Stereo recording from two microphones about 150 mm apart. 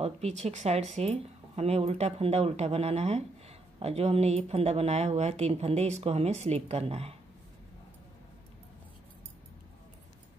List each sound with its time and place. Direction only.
0.0 s speech: 45° right (ahead or behind)